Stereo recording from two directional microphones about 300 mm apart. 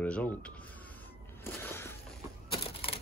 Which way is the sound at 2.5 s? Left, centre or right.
Centre.